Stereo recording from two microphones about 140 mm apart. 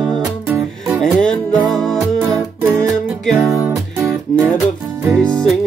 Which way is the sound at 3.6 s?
20° right (ahead or behind).